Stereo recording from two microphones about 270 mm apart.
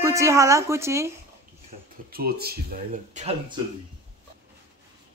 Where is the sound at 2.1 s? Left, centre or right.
Right.